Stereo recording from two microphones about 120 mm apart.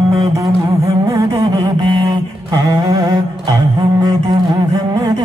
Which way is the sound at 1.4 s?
40° right (ahead or behind).